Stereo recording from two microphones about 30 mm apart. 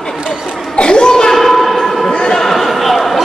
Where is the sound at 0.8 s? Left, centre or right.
Left.